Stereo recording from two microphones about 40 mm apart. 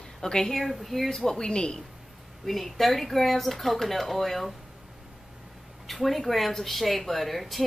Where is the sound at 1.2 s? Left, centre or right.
Centre.